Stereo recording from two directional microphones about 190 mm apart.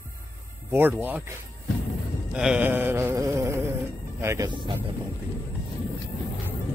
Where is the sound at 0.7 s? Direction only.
10° right (ahead or behind).